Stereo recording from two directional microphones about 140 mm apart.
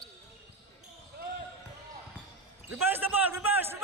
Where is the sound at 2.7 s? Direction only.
15° right (ahead or behind).